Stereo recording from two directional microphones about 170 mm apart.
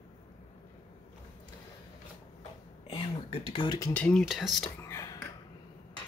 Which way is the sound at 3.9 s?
5° left (ahead or behind).